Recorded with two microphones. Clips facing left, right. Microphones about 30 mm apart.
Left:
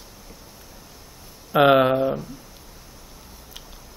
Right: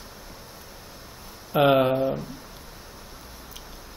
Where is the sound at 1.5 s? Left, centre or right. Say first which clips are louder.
Left 3 dB; centre.